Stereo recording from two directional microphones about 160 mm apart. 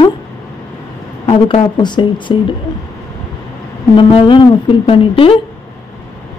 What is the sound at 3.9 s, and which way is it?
Speech, 30° left (ahead or behind).